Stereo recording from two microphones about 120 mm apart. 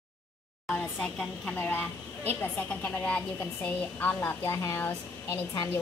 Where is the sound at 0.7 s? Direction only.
5° left (ahead or behind).